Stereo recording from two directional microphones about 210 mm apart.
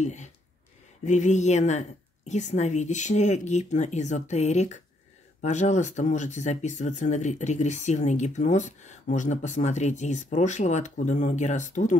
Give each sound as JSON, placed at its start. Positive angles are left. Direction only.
{"t": 0.0, "sound": "speech", "side_deg": 35}